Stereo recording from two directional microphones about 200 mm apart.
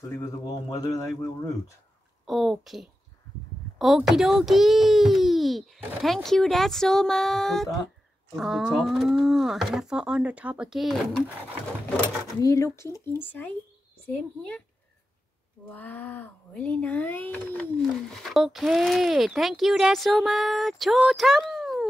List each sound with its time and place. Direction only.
0.2 s speech: 15° left (ahead or behind)
2.2 s speech: centre (ahead or behind)
12.4 s speech: 15° left (ahead or behind)
15.7 s speech: 10° left (ahead or behind)